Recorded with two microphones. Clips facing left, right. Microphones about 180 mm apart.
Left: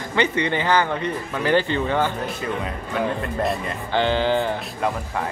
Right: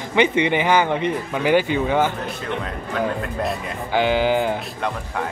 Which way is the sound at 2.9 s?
Centre (ahead or behind).